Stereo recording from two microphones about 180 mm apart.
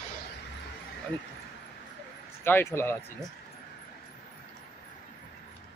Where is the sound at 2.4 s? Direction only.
10° left (ahead or behind).